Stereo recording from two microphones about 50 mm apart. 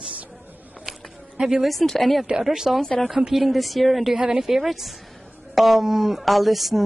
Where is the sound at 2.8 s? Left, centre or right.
Centre.